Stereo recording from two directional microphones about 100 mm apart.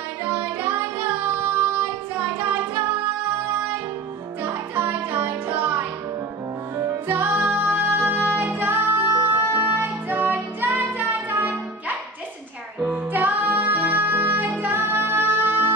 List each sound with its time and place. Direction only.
0.4 s music: 20° right (ahead or behind)
4.7 s music: 20° right (ahead or behind)
7.1 s music: 20° right (ahead or behind)
12.8 s music: 20° right (ahead or behind)